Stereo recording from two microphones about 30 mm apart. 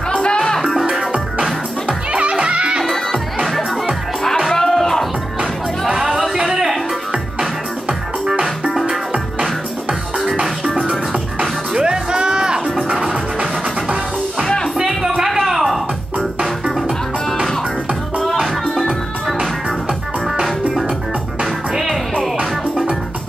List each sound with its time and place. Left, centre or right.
0.1 s music: left
0.6 s music: centre
1.9 s music: right
2.8 s music: centre
4.5 s music: centre
6.4 s music: centre
9.1 s music: right
11.7 s music: right
15.0 s a sound: centre
15.4 s music: centre